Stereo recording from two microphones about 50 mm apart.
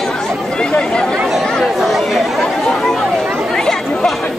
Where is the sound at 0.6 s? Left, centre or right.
Centre.